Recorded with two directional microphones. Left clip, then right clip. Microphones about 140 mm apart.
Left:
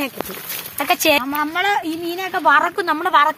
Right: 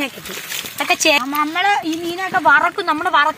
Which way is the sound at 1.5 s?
55° left (ahead or behind).